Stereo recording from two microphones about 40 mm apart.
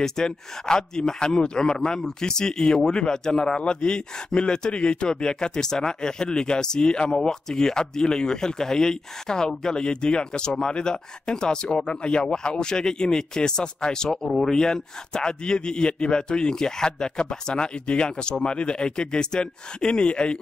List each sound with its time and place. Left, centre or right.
0.0 s a man's voice: centre